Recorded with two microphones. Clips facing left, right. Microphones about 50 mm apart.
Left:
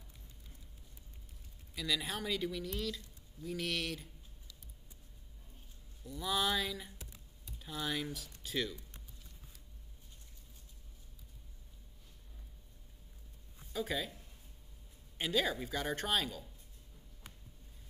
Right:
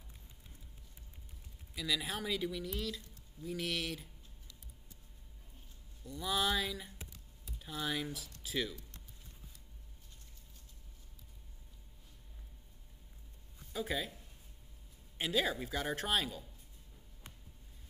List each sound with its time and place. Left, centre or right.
1.8 s speech: centre
6.0 s speech: centre
13.7 s speech: centre